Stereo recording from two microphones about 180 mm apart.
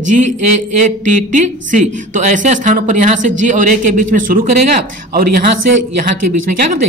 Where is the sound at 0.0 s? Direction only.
45° right (ahead or behind).